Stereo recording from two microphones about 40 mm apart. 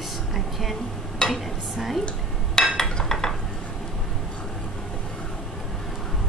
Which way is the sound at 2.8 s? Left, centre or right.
Centre.